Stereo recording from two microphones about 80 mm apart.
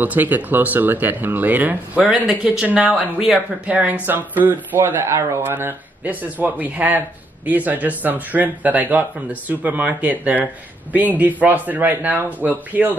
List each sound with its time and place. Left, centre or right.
0.0 s speech: right